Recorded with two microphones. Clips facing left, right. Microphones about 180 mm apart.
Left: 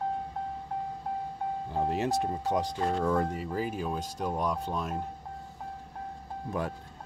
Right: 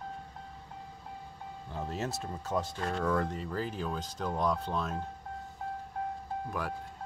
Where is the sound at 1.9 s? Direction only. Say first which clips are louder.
Left 7 dB; 15° left (ahead or behind).